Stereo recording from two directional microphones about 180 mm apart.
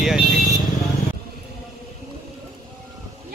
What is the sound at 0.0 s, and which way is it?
Vehicle, centre (ahead or behind).